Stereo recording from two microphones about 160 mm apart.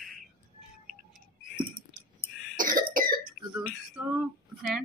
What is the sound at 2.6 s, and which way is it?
Cough, 60° right (ahead or behind).